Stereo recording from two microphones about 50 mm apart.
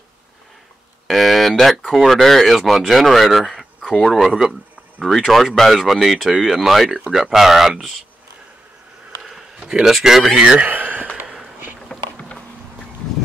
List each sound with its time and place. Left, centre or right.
1.0 s speech: centre
4.3 s speech: centre
5.0 s speech: centre
9.7 s speech: centre
10.4 s speech: right
10.7 s a sound: right
11.9 s walk: centre